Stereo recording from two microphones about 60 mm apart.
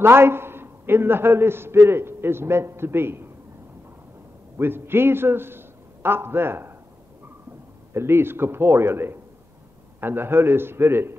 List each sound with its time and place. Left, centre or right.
0.0 s a man's voice: right
4.6 s a man's voice: right
7.9 s a man's voice: right